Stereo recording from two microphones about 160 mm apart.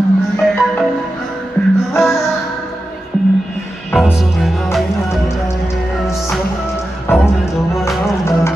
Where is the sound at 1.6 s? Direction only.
5° left (ahead or behind).